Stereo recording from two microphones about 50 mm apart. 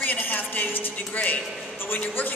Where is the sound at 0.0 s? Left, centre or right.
Left.